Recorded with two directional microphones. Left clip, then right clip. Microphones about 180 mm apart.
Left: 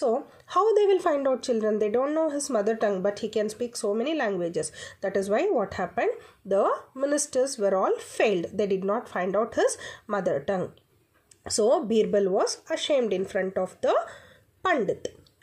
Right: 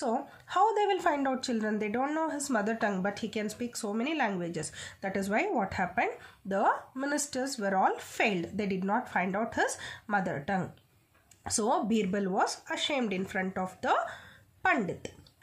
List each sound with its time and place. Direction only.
0.0 s a woman's voice: 15° left (ahead or behind)